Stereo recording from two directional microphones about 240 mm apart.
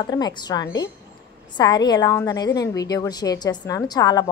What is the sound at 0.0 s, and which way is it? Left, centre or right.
A woman's voice, centre.